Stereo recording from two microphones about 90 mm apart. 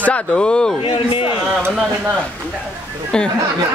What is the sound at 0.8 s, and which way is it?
Speech, 85° left.